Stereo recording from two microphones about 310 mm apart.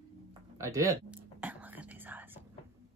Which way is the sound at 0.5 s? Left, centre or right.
Centre.